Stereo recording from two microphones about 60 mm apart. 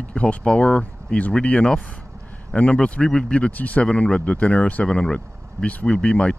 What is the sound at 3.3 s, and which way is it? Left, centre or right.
Speech, left.